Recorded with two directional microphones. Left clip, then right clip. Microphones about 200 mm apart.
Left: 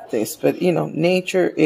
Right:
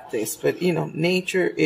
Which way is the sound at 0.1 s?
50° left (ahead or behind).